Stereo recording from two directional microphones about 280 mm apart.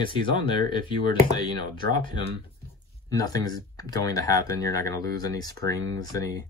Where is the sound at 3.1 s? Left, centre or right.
Centre.